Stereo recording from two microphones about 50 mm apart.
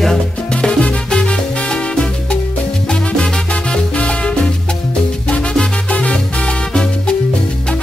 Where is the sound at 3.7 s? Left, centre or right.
Left.